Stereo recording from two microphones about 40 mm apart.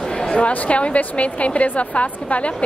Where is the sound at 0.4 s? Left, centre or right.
Left.